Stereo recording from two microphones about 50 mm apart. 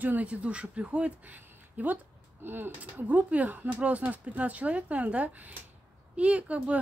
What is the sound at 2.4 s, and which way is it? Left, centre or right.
Speech, right.